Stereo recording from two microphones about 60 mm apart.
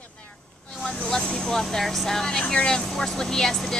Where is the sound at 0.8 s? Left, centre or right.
Centre.